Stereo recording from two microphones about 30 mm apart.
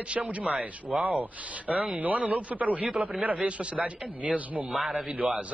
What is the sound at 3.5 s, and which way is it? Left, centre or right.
A man's voice, right.